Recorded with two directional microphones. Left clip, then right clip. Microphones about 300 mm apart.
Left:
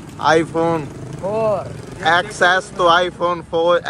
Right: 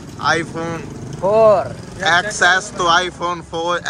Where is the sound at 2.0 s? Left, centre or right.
Centre.